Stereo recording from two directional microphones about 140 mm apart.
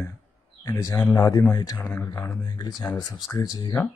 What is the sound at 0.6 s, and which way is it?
Speech, 20° left (ahead or behind).